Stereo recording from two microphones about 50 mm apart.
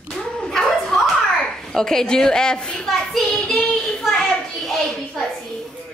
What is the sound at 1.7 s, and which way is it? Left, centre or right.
Speech, centre.